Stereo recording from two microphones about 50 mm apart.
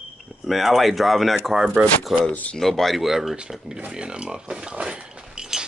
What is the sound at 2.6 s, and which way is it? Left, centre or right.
Speech, centre.